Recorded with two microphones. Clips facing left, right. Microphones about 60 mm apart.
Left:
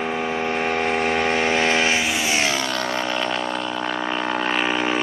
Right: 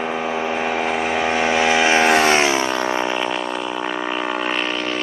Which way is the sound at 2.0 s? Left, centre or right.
Right.